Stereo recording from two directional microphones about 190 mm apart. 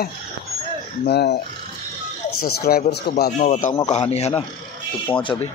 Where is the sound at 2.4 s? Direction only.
50° left (ahead or behind).